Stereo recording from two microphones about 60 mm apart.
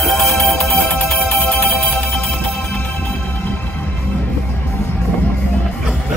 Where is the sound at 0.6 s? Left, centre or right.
Left.